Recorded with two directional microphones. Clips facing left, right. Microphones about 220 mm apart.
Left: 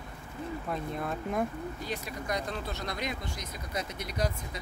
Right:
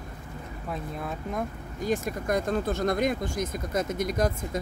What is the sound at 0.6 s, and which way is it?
Speech, centre (ahead or behind).